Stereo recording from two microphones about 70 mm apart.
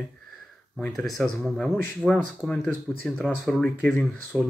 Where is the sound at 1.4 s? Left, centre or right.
Centre.